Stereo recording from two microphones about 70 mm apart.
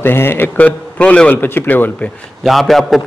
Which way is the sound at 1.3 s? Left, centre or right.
Left.